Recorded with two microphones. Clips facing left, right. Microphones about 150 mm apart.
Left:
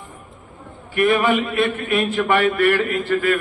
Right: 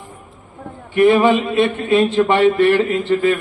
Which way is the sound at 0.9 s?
25° right (ahead or behind).